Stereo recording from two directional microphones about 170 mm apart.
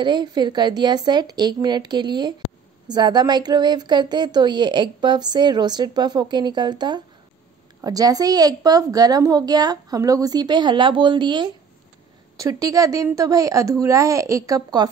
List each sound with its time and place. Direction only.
0.0 s speech: 25° right (ahead or behind)